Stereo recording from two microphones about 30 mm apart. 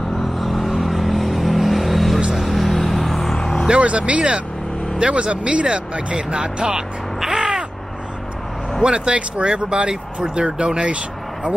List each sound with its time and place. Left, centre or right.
0.4 s vehicle: centre
3.8 s speech: right
4.9 s speech: right
7.2 s crow: centre
8.8 s speech: right